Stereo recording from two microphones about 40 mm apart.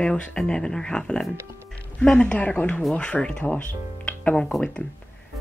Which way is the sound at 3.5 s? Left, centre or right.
Left.